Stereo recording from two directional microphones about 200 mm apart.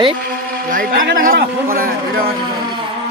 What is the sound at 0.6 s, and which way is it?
Speech, 45° right (ahead or behind).